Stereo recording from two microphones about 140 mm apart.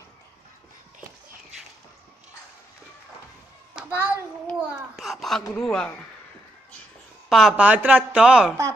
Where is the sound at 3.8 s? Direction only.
5° right (ahead or behind).